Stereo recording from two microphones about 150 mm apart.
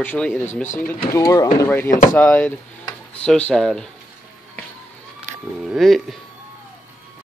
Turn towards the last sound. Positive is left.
turn(degrees=0)  # may be behind; listen again after turning